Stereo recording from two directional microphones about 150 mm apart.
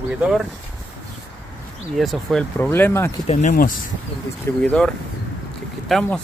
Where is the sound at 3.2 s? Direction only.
50° left (ahead or behind).